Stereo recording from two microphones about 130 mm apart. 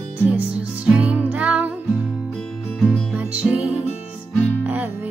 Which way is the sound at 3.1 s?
10° right (ahead or behind).